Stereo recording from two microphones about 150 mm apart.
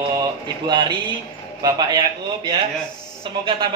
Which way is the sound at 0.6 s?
30° right (ahead or behind).